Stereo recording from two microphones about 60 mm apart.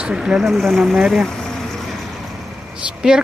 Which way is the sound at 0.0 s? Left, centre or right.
Centre.